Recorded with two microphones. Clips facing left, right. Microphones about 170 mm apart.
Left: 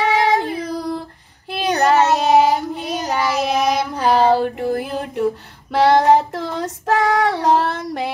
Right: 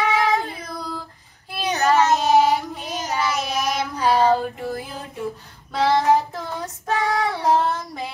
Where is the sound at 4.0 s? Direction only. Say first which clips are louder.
Left 3 dB; 65° left (ahead or behind).